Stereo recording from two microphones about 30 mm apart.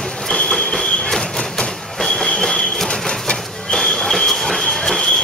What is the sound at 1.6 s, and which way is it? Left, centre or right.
Train, centre.